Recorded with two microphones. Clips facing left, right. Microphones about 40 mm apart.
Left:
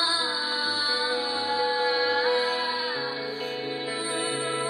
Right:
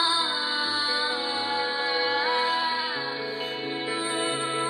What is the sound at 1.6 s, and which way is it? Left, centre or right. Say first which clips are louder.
Music: left 4 dB; right.